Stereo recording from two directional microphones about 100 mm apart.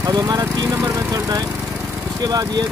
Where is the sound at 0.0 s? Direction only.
40° right (ahead or behind).